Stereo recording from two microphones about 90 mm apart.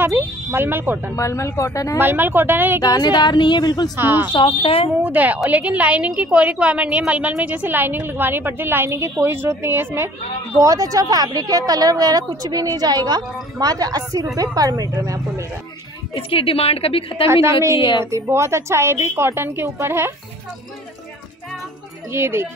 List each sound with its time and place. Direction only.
0.1 s a woman's voice: 25° right (ahead or behind)
1.1 s speech: 35° left (ahead or behind)
2.0 s a woman's voice: 25° right (ahead or behind)
2.8 s a woman's voice: 50° left (ahead or behind)
3.9 s a woman's voice: 25° right (ahead or behind)
4.3 s a woman's voice: 60° left (ahead or behind); by 4.9 s 90° left
5.0 s a woman's voice: 20° right (ahead or behind)
10.6 s a woman's voice: 40° right (ahead or behind)
16.2 s a woman's voice: 90° left
17.7 s a woman's voice: 60° left (ahead or behind)
18.1 s a woman's voice: 30° right (ahead or behind)
22.1 s a woman's voice: 30° right (ahead or behind)